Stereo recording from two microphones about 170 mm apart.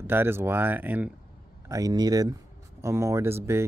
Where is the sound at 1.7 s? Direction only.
20° right (ahead or behind).